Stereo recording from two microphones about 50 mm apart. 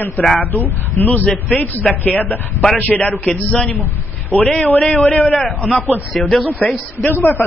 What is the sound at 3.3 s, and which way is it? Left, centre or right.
Speech, centre.